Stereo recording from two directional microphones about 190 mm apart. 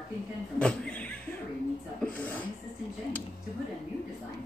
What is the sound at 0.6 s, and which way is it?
A woman's voice, 5° left (ahead or behind).